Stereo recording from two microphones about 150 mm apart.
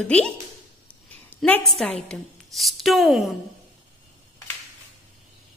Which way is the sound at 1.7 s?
Centre (ahead or behind).